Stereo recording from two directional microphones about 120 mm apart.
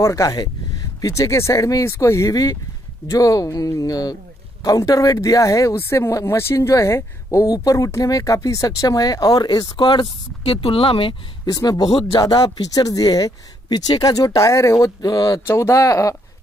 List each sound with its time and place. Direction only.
0.0 s speech: 30° left (ahead or behind); by 11.1 s 50° left (ahead or behind)
11.4 s speech: 30° left (ahead or behind)
15.4 s speech: 25° left (ahead or behind)